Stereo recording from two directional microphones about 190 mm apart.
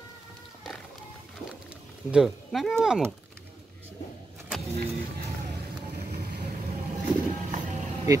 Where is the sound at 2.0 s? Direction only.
5° right (ahead or behind).